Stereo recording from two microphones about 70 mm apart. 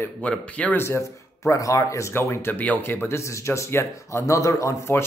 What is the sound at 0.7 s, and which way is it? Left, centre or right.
Speech, left.